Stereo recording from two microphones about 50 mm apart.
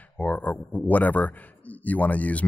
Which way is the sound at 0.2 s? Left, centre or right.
Left.